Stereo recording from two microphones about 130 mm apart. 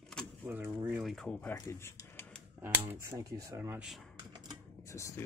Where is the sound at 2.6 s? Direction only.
15° right (ahead or behind).